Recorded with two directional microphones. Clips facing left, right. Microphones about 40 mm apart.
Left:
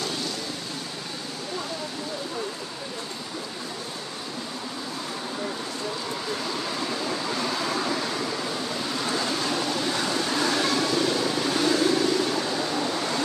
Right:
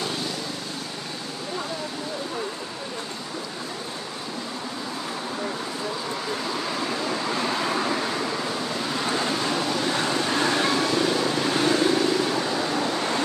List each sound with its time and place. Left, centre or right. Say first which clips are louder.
6.6 s vehicle: right 2 dB; centre
7.3 s vehicle: right 3 dB; right
9.0 s waves: right 2 dB; right
9.9 s vehicle: right 2 dB; right